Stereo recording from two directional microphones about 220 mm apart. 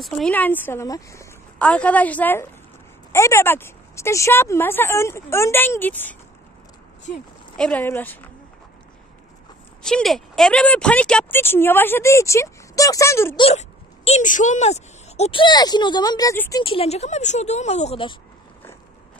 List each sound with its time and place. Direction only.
0.0 s speech: 5° left (ahead or behind)
7.5 s speech: 5° left (ahead or behind)
9.8 s speech: centre (ahead or behind)
13.4 s speech: 30° left (ahead or behind)